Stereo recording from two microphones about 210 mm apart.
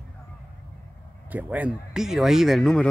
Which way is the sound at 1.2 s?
5° right (ahead or behind).